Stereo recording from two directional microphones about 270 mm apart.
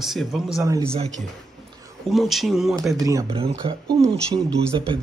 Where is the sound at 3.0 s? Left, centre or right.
Centre.